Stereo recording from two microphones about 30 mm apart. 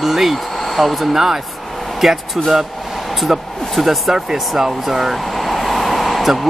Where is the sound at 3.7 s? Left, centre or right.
Centre.